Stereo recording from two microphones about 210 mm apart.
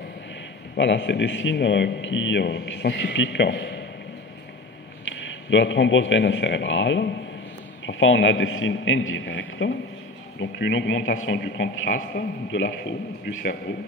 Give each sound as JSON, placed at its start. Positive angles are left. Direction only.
{"t": 0.7, "sound": "a man's voice", "side_deg": 60}
{"t": 5.5, "sound": "a man's voice", "side_deg": 60}